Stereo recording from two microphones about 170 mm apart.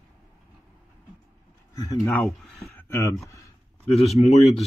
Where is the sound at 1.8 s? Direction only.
20° left (ahead or behind).